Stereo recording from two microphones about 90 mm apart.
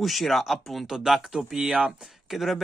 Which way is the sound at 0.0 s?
Centre (ahead or behind).